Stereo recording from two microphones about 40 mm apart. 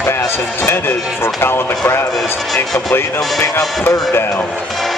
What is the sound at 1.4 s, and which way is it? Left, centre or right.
Speech, left.